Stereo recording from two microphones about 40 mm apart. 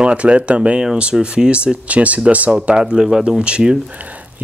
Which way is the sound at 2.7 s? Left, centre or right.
Right.